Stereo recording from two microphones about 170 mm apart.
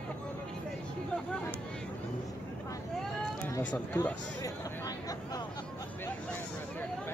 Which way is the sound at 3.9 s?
20° left (ahead or behind).